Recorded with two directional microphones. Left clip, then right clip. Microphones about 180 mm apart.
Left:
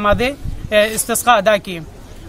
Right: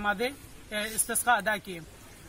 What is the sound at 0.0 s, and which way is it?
Speech, 25° left (ahead or behind).